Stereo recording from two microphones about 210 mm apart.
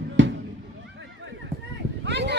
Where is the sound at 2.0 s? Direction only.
55° right (ahead or behind).